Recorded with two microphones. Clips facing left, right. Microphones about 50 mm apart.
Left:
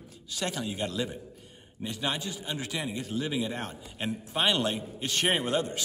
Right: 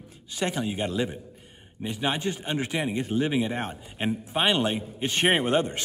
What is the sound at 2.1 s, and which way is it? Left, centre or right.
A man's voice, right.